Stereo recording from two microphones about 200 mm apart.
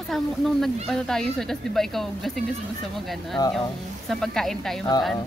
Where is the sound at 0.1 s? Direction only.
Centre (ahead or behind).